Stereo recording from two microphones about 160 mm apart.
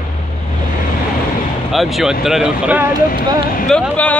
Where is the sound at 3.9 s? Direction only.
10° left (ahead or behind).